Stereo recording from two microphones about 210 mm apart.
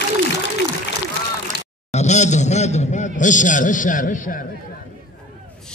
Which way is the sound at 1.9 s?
35° left (ahead or behind).